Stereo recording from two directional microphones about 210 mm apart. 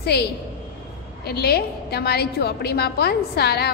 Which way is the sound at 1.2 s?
50° left (ahead or behind).